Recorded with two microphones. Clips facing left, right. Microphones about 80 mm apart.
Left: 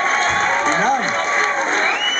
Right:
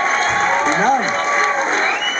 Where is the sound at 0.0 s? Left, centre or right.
Centre.